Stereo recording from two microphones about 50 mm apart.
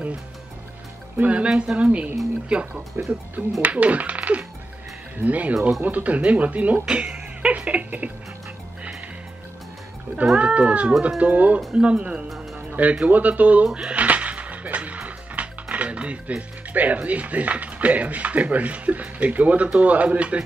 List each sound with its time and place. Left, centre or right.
1.1 s speech: right
2.9 s speech: right
3.6 s speech: right
10.4 s speech: right
12.5 s music: right
13.0 s speech: right